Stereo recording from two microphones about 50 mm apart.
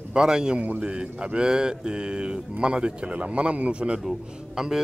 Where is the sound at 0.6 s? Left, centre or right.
Right.